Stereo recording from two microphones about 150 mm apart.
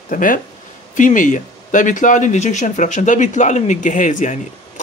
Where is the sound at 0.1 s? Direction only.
65° left (ahead or behind).